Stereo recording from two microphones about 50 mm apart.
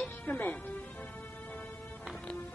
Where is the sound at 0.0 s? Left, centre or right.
Left.